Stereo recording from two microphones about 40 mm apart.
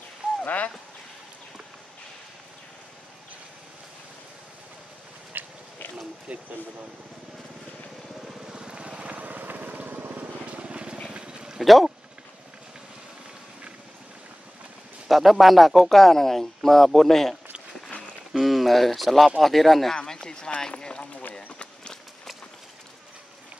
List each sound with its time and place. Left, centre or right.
0.2 s a sound: right
5.3 s a sound: right
8.4 s vehicle: centre; by 10.0 s right
10.5 s vehicle: right
11.1 s a sound: right
11.6 s speech: centre
15.0 s speech: centre
18.4 s speech: centre
19.9 s speech: centre
21.2 s run: left